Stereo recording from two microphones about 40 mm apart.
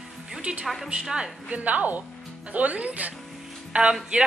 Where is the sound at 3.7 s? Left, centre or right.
Right.